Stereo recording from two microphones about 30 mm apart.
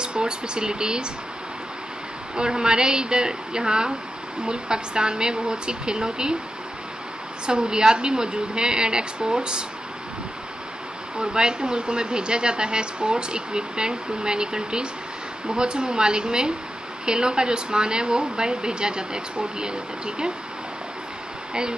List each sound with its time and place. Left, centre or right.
0.0 s speech: right
2.3 s speech: right
7.4 s speech: right
11.1 s speech: right